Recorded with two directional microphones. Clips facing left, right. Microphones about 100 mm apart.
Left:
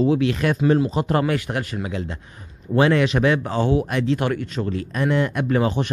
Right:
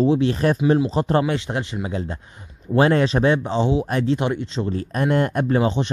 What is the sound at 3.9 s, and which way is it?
Speech, 35° right (ahead or behind).